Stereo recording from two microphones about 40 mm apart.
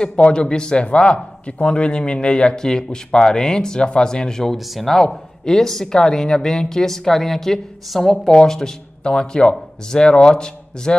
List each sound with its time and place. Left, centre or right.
0.3 s speech: left; by 8.4 s centre
8.4 s speech: centre